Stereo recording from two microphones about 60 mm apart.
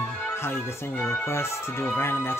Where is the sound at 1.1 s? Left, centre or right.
Left.